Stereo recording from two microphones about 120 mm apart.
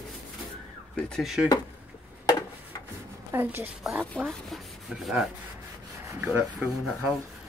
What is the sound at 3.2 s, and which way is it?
Speech, 20° right (ahead or behind).